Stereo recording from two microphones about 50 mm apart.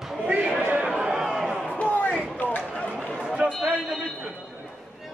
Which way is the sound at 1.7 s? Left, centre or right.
Left.